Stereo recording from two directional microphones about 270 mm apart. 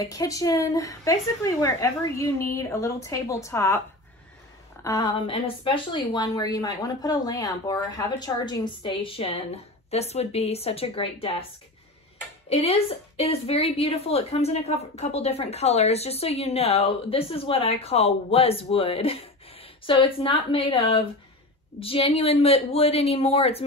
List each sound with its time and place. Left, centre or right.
0.0 s a woman's voice: centre
4.8 s a woman's voice: centre
12.4 s a woman's voice: left